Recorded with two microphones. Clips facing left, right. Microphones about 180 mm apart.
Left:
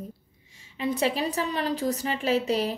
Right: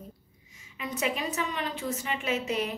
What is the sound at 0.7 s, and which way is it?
A woman's voice, 30° left (ahead or behind).